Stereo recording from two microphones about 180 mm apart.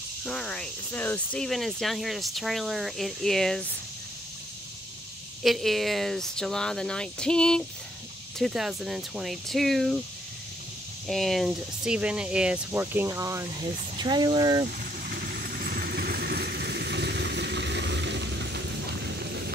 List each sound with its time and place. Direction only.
0.2 s speech: 5° left (ahead or behind)
5.4 s speech: centre (ahead or behind)
11.1 s speech: centre (ahead or behind); by 13.5 s 15° right (ahead or behind)
13.5 s speech: 30° right (ahead or behind)
14.8 s vehicle: 55° right (ahead or behind); by 18.6 s 75° right (ahead or behind)
19.0 s music: 65° right (ahead or behind)